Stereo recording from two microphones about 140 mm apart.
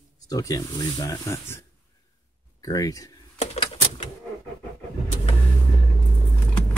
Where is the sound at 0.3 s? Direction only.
25° left (ahead or behind).